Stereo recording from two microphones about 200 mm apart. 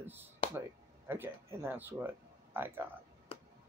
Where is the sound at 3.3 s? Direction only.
25° left (ahead or behind).